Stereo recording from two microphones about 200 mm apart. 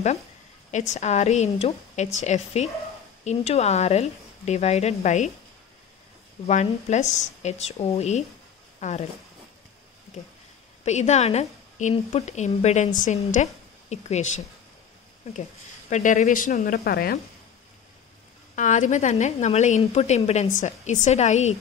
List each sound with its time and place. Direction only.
0.7 s a woman's voice: 35° left (ahead or behind)
6.4 s a woman's voice: 35° left (ahead or behind)
8.7 s a sound: 35° left (ahead or behind)
10.9 s a woman's voice: 35° left (ahead or behind)
15.9 s a woman's voice: 35° left (ahead or behind)
18.6 s a woman's voice: 35° left (ahead or behind)